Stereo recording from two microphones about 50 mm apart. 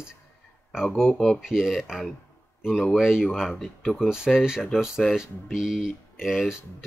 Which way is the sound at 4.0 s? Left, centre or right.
Centre.